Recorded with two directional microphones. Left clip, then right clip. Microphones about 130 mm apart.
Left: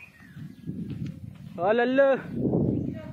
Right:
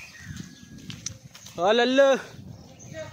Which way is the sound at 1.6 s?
20° right (ahead or behind).